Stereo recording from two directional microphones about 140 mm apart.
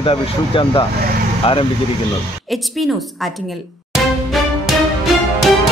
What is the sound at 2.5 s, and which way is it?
Speech, centre (ahead or behind).